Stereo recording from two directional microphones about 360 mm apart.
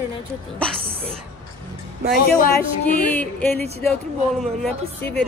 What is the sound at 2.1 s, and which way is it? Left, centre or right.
Speech, left.